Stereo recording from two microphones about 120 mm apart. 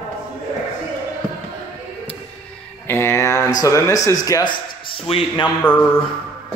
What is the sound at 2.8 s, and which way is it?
A man's voice, 20° left (ahead or behind).